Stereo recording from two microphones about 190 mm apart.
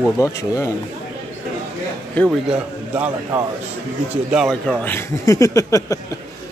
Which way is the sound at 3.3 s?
10° right (ahead or behind).